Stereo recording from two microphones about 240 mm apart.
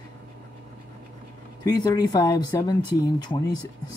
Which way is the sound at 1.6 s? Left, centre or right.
Centre.